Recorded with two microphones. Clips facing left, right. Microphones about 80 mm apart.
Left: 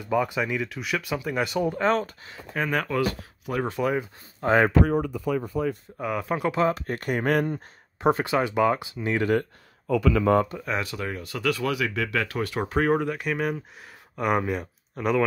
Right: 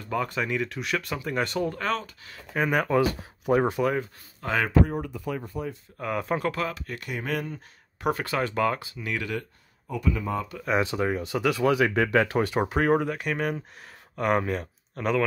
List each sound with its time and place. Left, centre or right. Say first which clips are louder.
0.0 s speech: left 4 dB; centre
1.7 s speech: left 5 dB; left
2.5 s speech: right 2 dB; centre
2.9 s speech: right 3 dB; right
4.4 s speech: left 7 dB; left
5.9 s speech: right 3 dB; centre
6.4 s speech: left 5 dB; left
6.7 s speech: left 7 dB; left
8.0 s speech: left 4 dB; left
9.8 s speech: left 8 dB; left
10.8 s speech: right 5 dB; right
12.5 s speech: left 1 dB; centre